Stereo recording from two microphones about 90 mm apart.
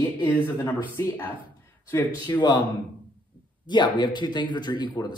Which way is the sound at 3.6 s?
55° left (ahead or behind).